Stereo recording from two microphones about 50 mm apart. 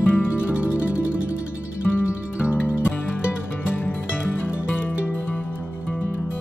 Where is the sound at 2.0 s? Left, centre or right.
Left.